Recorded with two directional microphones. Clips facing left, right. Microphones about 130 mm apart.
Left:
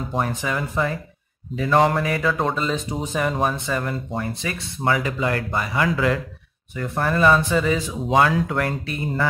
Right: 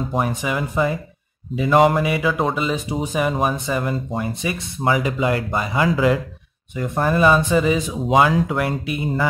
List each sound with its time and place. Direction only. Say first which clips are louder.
0.1 s speech: even; 10° right (ahead or behind)